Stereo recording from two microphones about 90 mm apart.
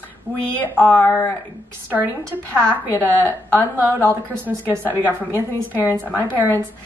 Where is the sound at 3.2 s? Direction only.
20° left (ahead or behind).